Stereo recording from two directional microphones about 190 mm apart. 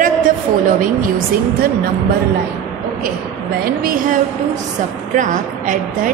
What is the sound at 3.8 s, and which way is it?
A woman's voice, 50° right (ahead or behind).